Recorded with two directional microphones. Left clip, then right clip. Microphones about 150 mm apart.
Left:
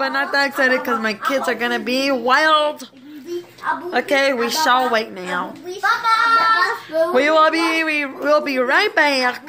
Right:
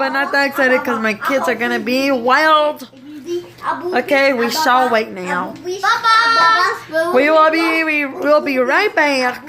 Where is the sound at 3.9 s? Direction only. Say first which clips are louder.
Right 4 dB; centre (ahead or behind).